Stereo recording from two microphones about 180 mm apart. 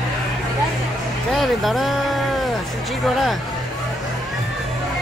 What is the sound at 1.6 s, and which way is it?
Speech, centre (ahead or behind).